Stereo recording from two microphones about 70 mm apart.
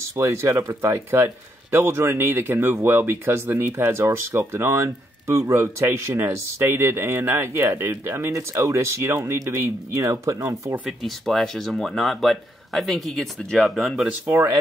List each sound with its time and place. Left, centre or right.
0.1 s speech: right
1.1 s speech: right
10.9 s speech: centre